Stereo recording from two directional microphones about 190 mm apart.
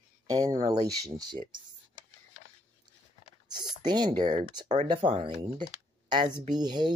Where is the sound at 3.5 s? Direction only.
20° right (ahead or behind).